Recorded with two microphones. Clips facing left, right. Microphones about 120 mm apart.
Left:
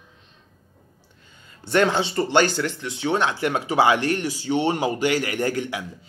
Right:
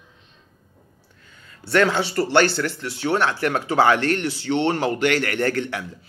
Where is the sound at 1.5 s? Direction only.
20° left (ahead or behind).